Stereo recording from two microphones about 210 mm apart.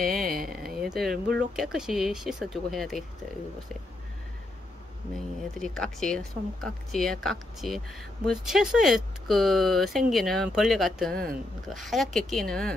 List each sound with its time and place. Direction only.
0.0 s a sound: 45° right (ahead or behind)
0.5 s speech: centre (ahead or behind)
5.6 s speech: centre (ahead or behind)